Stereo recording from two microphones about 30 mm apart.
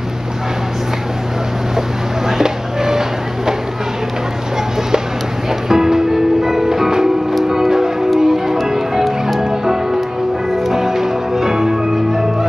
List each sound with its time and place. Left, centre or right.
2.2 s a sound: centre
5.7 s music: centre
10.7 s music: centre